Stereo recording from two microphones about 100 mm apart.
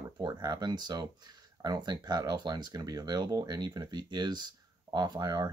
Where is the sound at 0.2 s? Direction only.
45° right (ahead or behind).